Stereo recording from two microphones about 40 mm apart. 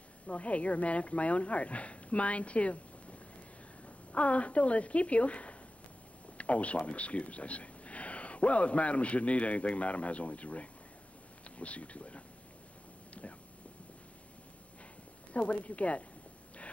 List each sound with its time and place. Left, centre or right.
0.3 s speech: left
15.3 s speech: left